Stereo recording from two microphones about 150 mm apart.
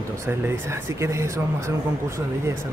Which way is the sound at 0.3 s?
15° right (ahead or behind).